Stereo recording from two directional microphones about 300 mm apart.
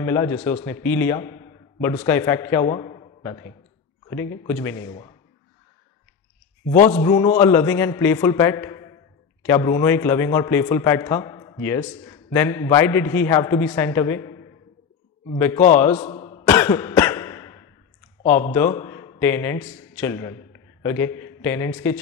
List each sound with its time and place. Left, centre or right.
0.0 s a man's voice: centre
6.9 s a man's voice: centre
16.1 s cough: centre
16.4 s cough: centre
18.2 s a man's voice: centre